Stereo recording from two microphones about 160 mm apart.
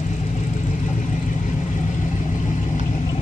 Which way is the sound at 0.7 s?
50° left (ahead or behind).